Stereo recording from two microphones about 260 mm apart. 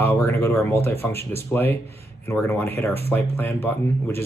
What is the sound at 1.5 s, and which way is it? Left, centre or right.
Speech, centre.